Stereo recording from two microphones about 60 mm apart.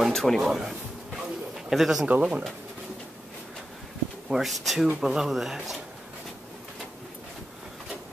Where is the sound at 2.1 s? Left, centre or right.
Right.